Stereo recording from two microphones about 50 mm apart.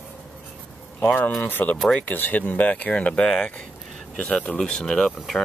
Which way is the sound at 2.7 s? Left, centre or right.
Left.